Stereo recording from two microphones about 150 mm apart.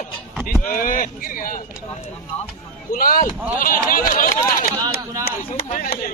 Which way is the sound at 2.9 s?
70° left (ahead or behind).